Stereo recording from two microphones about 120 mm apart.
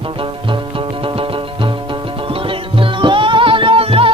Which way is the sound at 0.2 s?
45° right (ahead or behind).